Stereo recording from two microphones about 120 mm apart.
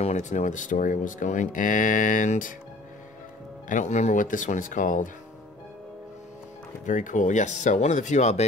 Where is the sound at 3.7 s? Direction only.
85° left.